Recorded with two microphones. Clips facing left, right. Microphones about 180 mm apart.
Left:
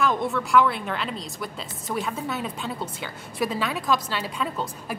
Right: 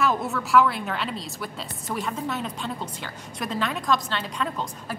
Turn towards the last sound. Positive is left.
turn(degrees=5)  # may be behind; listen again after turning